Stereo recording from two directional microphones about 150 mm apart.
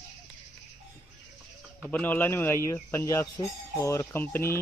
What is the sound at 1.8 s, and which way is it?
Speech, 10° left (ahead or behind).